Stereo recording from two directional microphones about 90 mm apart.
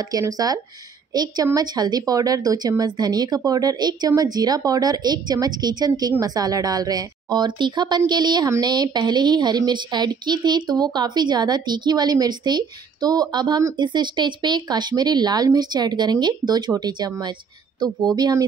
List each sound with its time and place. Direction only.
0.2 s a woman's voice: 45° right (ahead or behind)